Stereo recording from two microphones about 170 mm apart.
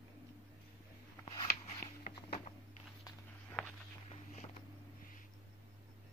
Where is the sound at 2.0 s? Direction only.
40° left (ahead or behind).